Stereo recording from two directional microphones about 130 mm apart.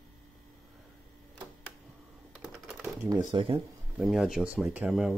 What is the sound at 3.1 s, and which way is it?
Speech, 35° right (ahead or behind).